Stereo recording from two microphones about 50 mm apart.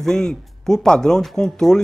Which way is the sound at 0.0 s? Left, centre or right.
Centre.